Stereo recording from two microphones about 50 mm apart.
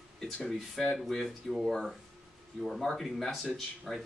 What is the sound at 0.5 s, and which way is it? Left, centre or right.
Speech, centre.